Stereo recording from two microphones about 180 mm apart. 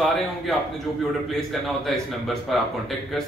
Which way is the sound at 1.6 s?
Centre (ahead or behind).